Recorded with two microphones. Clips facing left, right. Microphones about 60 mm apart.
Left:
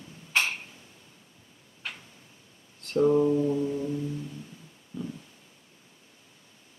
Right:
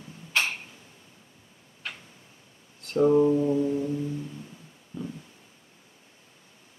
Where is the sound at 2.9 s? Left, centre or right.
Centre.